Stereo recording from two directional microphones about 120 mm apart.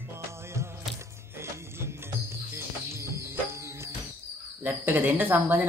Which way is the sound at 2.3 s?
25° right (ahead or behind).